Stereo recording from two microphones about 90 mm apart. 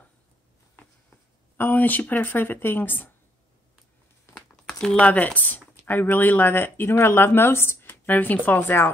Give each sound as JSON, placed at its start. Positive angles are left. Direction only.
{"t": 0.7, "sound": "speech", "side_deg": 20}
{"t": 4.6, "sound": "a sound", "side_deg": 10}
{"t": 5.0, "sound": "speech", "side_deg": 20}